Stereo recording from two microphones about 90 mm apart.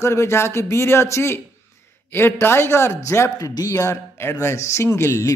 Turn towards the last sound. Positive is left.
turn(degrees=30)  # may be behind; listen again after turning